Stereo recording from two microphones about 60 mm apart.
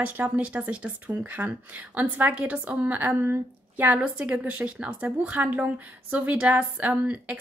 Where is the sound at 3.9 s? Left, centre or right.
Right.